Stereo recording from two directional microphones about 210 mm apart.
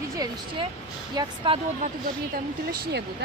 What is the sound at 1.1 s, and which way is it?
Speech, 25° right (ahead or behind).